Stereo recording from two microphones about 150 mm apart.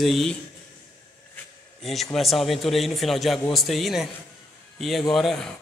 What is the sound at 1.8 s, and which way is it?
A man's voice, centre (ahead or behind).